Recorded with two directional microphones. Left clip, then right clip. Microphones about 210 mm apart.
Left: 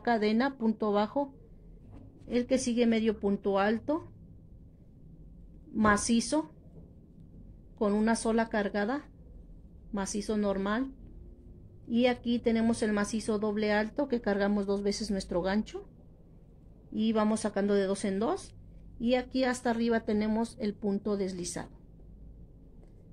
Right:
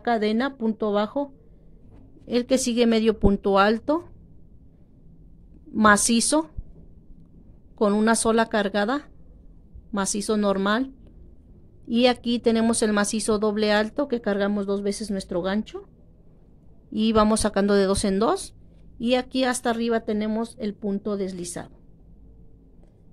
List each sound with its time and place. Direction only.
0.0 s a woman's voice: 25° right (ahead or behind)
2.2 s a woman's voice: 40° right (ahead or behind)
5.8 s a woman's voice: 40° right (ahead or behind)
7.8 s a woman's voice: 40° right (ahead or behind); by 15.8 s 25° right (ahead or behind)
16.9 s a woman's voice: 40° right (ahead or behind); by 21.7 s 20° right (ahead or behind)